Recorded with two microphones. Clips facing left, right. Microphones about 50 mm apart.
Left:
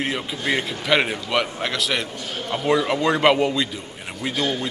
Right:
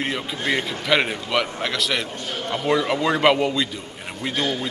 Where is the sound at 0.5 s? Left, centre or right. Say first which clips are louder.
Even; centre.